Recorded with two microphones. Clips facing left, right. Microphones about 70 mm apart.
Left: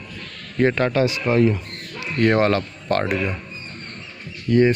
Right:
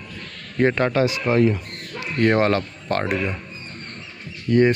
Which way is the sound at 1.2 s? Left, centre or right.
Centre.